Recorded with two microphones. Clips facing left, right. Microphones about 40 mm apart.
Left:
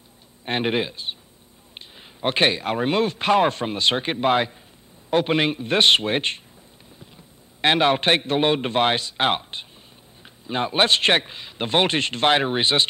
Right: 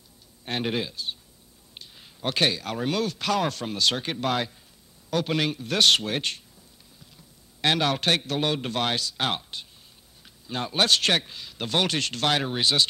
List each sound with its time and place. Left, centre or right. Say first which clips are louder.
0.5 s speech: left 5 dB; left
7.6 s speech: left 5 dB; left